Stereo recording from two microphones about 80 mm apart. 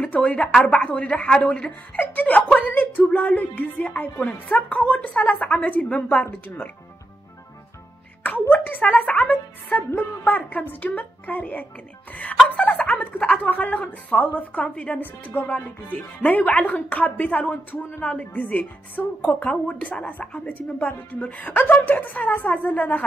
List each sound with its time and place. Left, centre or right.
0.0 s speech: centre
8.2 s a sound: left
9.8 s speech: left